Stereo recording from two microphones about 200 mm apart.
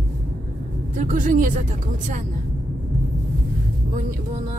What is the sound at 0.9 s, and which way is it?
Speech, 40° right (ahead or behind).